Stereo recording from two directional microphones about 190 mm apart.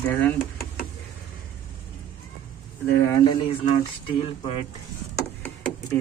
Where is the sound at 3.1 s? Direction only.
25° left (ahead or behind).